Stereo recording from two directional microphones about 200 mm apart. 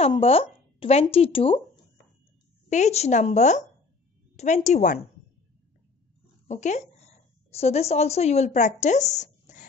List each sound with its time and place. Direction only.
0.0 s speech: 30° left (ahead or behind)
2.7 s a woman's voice: 35° left (ahead or behind)
6.4 s a woman's voice: 35° left (ahead or behind)